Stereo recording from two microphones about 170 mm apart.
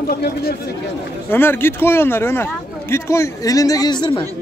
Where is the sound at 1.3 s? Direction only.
15° left (ahead or behind).